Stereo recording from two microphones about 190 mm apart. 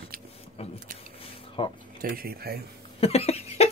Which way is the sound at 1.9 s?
50° right (ahead or behind).